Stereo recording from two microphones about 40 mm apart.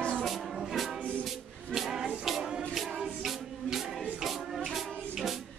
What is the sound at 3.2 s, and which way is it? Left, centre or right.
Music, centre.